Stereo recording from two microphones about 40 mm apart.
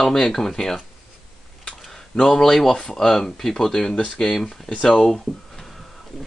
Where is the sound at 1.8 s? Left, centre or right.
Centre.